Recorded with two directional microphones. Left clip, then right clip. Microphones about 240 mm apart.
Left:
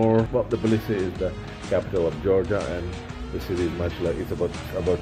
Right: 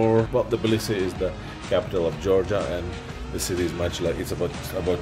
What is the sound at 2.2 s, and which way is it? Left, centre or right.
Speech, centre.